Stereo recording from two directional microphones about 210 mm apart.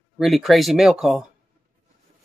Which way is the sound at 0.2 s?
Centre (ahead or behind).